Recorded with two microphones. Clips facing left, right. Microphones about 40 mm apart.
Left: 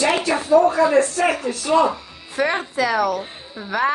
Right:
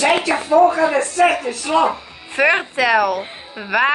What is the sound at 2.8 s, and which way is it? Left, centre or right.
Speech, right.